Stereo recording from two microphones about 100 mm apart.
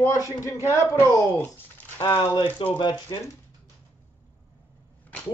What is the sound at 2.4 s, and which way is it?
Speech, 20° left (ahead or behind).